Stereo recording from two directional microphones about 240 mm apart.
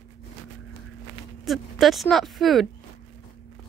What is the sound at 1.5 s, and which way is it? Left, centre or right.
A woman's voice, centre.